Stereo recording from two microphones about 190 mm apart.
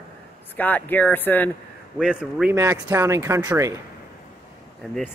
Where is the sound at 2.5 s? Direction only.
15° right (ahead or behind).